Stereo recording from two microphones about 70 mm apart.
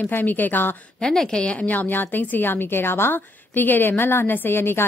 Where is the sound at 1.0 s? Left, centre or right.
Centre.